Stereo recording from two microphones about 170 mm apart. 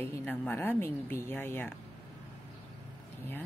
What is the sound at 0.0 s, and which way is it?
Speech, 10° left (ahead or behind).